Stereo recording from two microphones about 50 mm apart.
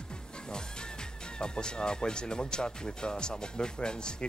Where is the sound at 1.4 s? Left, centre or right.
Centre.